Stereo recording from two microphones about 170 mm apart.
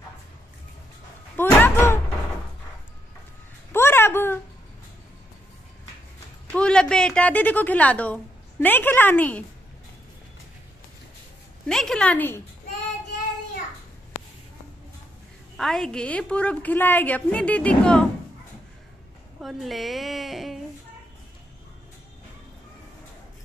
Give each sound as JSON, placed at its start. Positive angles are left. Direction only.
{"t": 1.3, "sound": "slam", "side_deg": 10}
{"t": 3.7, "sound": "a sound", "side_deg": 15}
{"t": 6.5, "sound": "a woman's voice", "side_deg": 5}
{"t": 11.6, "sound": "a woman's voice", "side_deg": 0}
{"t": 15.5, "sound": "a woman's voice", "side_deg": 0}
{"t": 19.4, "sound": "a woman's voice", "side_deg": 0}